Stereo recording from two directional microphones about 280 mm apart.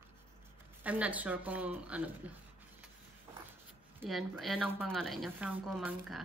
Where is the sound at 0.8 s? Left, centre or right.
Centre.